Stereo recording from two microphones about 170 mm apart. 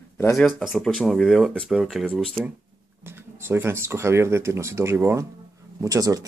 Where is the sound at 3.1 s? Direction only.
15° right (ahead or behind).